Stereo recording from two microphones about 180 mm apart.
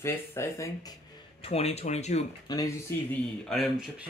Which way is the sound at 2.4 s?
20° left (ahead or behind).